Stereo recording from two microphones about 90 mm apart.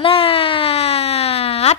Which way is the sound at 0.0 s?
90° left.